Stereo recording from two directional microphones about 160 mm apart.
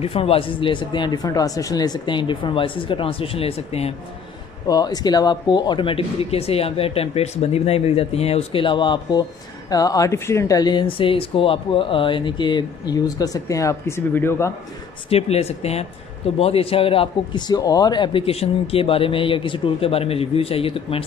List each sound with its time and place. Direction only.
0.0 s a man's voice: 35° left (ahead or behind)
4.6 s a man's voice: 25° left (ahead or behind)
15.0 s a man's voice: 40° left (ahead or behind)